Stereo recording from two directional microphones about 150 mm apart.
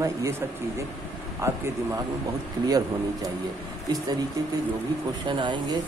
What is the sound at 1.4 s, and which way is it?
Speech, 20° right (ahead or behind).